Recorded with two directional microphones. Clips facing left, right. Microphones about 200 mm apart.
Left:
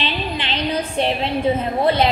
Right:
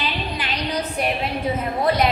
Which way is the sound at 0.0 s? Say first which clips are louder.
Left 2 dB; 25° left (ahead or behind).